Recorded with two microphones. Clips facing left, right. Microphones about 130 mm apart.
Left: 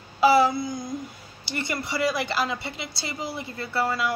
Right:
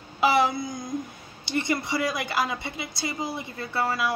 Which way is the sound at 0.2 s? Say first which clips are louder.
Left 3 dB; 20° right (ahead or behind).